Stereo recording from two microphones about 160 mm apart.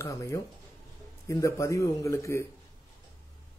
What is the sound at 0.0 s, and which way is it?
Speech, 20° left (ahead or behind).